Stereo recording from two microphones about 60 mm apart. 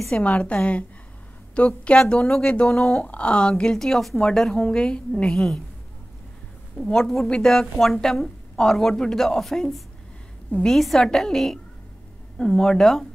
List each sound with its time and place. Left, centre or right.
0.1 s a woman's voice: centre
3.0 s speech: left
6.8 s a woman's voice: centre